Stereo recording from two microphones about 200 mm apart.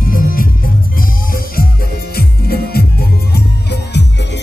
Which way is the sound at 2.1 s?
50° left (ahead or behind).